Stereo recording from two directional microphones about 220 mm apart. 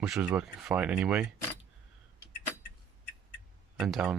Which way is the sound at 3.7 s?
Centre (ahead or behind).